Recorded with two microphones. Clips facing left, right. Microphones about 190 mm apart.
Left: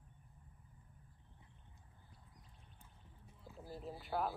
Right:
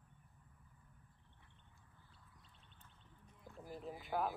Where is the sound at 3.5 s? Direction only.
10° left (ahead or behind).